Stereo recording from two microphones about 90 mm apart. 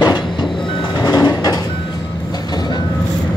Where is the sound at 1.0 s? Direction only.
40° left (ahead or behind).